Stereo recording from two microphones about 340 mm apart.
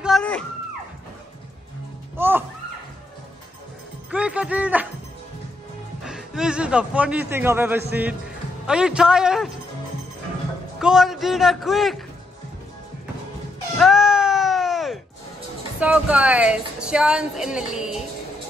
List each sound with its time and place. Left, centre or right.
0.0 s music: centre
2.1 s music: centre
4.1 s music: centre
6.0 s a woman's voice: centre
10.8 s a woman's voice: centre
13.7 s music: centre
15.8 s a woman's voice: centre